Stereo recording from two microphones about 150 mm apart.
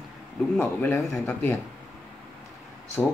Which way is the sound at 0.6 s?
15° left (ahead or behind).